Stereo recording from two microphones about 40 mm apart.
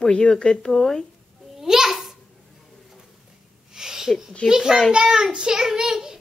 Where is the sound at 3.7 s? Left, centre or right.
Centre.